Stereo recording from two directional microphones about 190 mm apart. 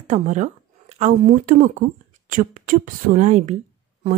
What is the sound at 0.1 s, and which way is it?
A woman's voice, 40° right (ahead or behind).